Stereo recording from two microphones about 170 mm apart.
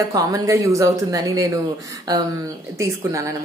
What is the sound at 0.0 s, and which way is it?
A woman's voice, 20° right (ahead or behind).